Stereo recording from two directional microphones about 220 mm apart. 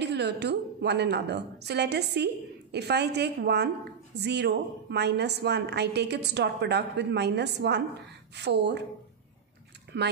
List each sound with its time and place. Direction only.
0.0 s a woman's voice: 50° right (ahead or behind)
9.9 s a woman's voice: 50° right (ahead or behind)